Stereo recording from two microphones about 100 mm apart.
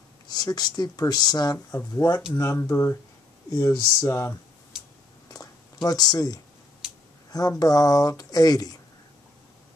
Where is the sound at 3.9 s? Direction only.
30° left (ahead or behind).